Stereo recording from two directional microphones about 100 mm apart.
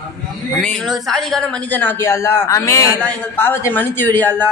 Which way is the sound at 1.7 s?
20° left (ahead or behind).